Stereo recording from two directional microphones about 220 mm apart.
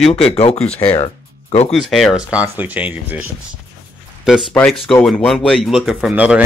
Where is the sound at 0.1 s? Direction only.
25° left (ahead or behind).